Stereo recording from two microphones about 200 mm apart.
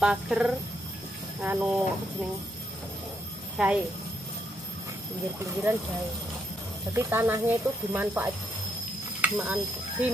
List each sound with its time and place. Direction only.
0.0 s speech: 5° right (ahead or behind)
3.5 s a child's voice: 5° right (ahead or behind)
5.4 s speech: 15° right (ahead or behind)
6.9 s speech: 15° right (ahead or behind)